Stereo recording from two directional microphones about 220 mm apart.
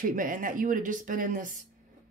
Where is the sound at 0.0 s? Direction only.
35° right (ahead or behind).